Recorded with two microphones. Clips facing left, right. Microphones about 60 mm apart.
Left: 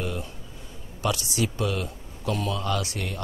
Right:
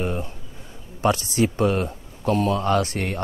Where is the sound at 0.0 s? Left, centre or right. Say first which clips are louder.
Right 5 dB; right.